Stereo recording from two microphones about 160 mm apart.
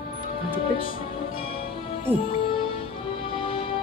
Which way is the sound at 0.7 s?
35° left (ahead or behind).